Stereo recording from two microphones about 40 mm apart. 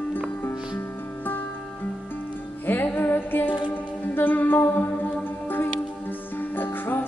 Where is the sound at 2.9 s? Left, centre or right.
Left.